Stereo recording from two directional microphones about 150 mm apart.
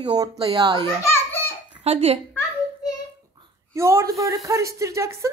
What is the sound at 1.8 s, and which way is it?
Speech, 40° right (ahead or behind).